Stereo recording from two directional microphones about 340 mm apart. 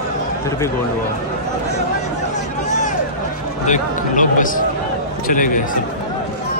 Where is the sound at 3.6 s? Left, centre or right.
Left.